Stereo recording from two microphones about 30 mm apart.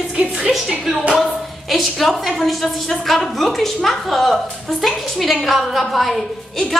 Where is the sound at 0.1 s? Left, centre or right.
Right.